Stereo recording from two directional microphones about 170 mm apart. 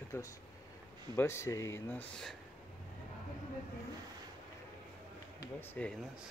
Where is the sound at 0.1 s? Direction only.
15° left (ahead or behind).